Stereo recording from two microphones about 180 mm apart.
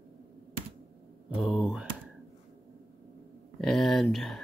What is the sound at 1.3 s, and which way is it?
Speech, centre (ahead or behind).